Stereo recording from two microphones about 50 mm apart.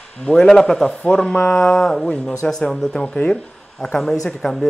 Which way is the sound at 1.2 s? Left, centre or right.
Centre.